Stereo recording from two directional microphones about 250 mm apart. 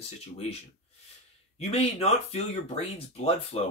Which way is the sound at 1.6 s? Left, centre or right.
Left.